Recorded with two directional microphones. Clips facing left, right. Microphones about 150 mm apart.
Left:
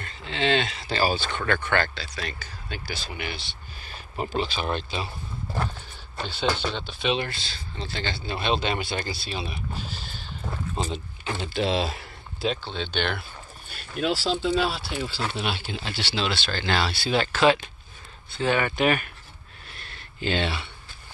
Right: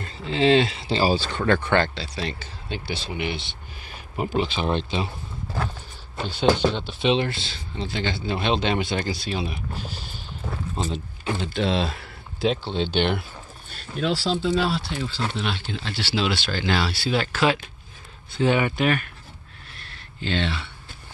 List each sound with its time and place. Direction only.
0.0 s speech: 35° right (ahead or behind)
6.1 s speech: 10° right (ahead or behind)
6.9 s speech: 25° right (ahead or behind)
10.8 s speech: centre (ahead or behind)
12.4 s speech: 25° right (ahead or behind)
13.7 s speech: 10° left (ahead or behind)
16.0 s speech: 5° right (ahead or behind)
18.8 s speech: 5° left (ahead or behind)
19.7 s a sound: centre (ahead or behind)